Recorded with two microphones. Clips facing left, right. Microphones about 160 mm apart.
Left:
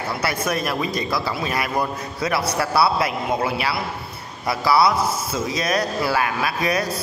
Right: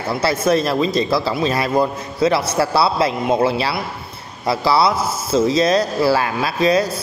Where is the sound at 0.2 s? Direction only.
25° right (ahead or behind).